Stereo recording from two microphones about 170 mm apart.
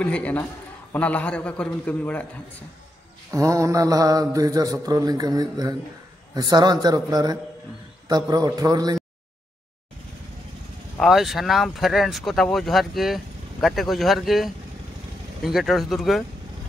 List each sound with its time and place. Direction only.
0.0 s a man's voice: 10° left (ahead or behind)
3.3 s mantra: 20° right (ahead or behind)
11.0 s speech: centre (ahead or behind)